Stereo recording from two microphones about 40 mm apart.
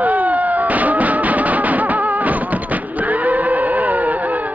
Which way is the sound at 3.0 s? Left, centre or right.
Right.